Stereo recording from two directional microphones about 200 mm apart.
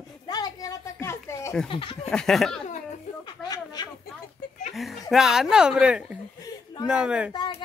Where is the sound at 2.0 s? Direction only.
5° left (ahead or behind).